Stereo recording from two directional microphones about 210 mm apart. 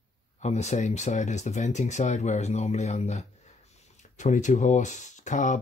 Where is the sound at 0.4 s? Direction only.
35° left (ahead or behind).